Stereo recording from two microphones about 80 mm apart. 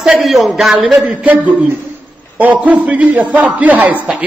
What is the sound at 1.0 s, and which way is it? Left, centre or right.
A man's voice, centre.